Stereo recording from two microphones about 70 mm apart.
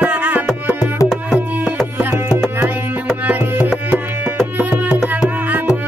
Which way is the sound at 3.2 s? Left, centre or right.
Right.